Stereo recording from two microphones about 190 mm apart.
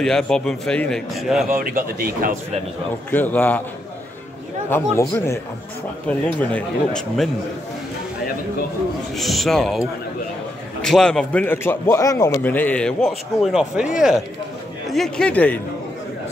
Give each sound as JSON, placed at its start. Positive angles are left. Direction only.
{"t": 0.0, "sound": "a man's voice", "side_deg": 0}
{"t": 1.5, "sound": "speech", "side_deg": -45}
{"t": 3.1, "sound": "a man's voice", "side_deg": 10}
{"t": 4.9, "sound": "a man's voice", "side_deg": 15}
{"t": 9.1, "sound": "a man's voice", "side_deg": 0}